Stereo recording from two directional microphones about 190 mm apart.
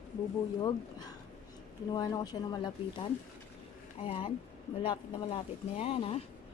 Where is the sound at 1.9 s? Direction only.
20° left (ahead or behind).